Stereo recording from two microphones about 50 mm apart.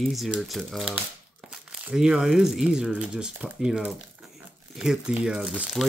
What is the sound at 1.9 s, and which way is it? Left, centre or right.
Speech, centre.